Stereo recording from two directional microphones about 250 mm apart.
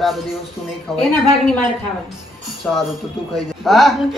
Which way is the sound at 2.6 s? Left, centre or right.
Centre.